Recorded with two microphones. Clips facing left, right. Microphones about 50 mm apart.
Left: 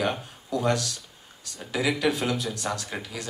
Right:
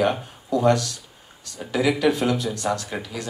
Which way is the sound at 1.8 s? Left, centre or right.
Centre.